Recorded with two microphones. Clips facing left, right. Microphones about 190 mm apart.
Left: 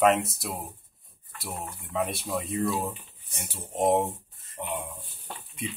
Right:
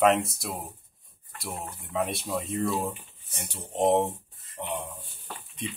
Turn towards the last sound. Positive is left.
turn(degrees=10)  # may be behind; listen again after turning